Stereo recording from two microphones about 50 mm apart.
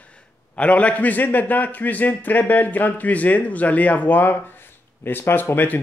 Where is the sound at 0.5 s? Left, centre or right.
Left.